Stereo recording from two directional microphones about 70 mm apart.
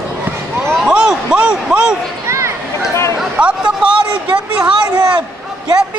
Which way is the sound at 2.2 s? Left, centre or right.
Right.